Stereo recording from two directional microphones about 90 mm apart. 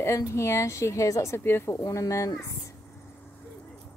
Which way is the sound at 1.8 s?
35° left (ahead or behind).